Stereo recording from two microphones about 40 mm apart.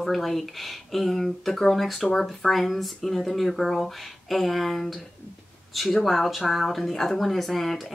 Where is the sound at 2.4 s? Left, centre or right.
Centre.